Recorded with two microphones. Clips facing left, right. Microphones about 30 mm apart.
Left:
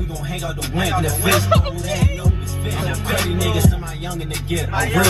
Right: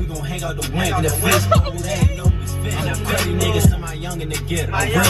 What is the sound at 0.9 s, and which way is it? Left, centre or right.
Speech, left.